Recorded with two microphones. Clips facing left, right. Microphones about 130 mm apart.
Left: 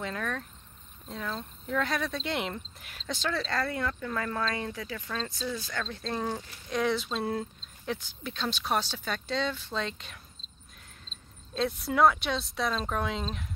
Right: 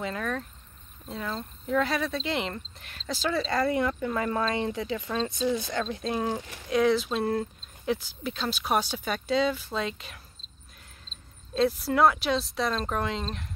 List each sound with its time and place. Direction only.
0.0 s speech: 5° right (ahead or behind)
6.4 s speech: 90° right
6.7 s speech: centre (ahead or behind)